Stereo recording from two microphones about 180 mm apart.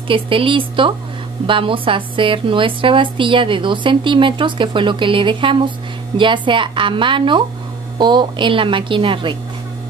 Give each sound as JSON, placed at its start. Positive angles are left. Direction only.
{"t": 0.1, "sound": "a woman's voice", "side_deg": -30}